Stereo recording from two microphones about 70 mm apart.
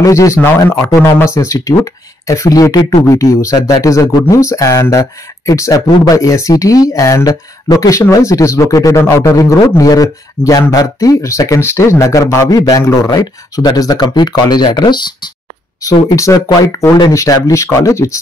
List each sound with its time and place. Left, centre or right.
0.0 s speech: left
3.1 s speech: left
4.3 s speech: left
5.5 s speech: left
7.6 s speech: left
9.4 s speech: left
12.5 s speech: left
15.8 s speech: left
16.3 s speech: left
17.1 s speech: left